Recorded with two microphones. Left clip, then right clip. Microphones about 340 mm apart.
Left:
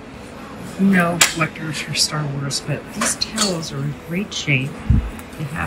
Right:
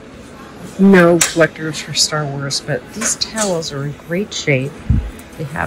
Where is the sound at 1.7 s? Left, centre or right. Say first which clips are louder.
Right 2 dB; centre.